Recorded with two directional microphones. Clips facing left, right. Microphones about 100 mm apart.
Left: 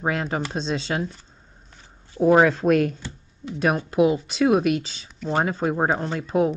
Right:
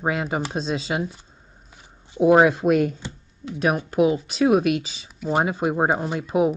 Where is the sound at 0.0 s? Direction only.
5° right (ahead or behind).